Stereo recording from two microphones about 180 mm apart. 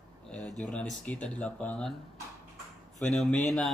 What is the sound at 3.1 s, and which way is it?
Speech, 5° left (ahead or behind).